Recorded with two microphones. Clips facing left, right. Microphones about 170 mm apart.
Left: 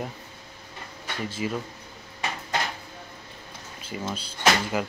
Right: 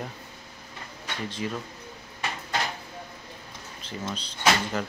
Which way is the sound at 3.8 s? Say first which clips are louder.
Left 2 dB; 5° left (ahead or behind).